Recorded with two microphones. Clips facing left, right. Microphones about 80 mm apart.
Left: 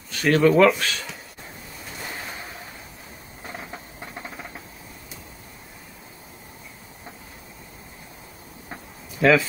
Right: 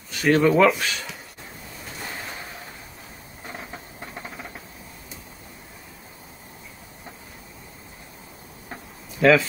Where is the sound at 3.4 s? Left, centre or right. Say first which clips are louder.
Left 1 dB; centre.